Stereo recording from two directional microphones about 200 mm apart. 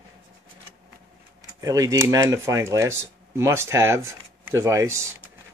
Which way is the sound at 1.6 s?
15° right (ahead or behind).